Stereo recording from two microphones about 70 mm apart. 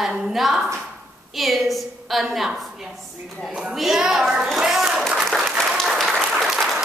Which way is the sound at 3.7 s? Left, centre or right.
Centre.